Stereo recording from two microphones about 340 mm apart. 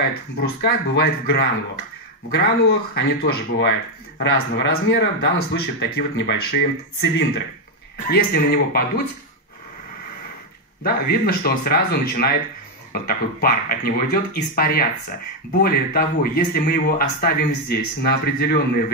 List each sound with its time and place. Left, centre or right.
0.1 s speech: left
10.8 s speech: left